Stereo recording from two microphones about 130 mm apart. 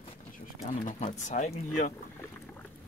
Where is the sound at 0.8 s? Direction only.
70° left (ahead or behind).